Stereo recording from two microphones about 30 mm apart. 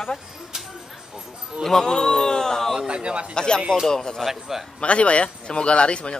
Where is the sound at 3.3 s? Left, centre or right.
Left.